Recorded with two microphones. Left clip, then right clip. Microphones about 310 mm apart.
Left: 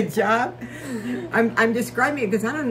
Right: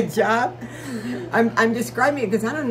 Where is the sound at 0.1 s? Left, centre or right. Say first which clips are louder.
Even; centre.